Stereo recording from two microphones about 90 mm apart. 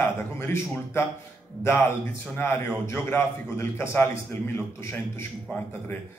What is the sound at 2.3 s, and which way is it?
A man's voice, 25° left (ahead or behind).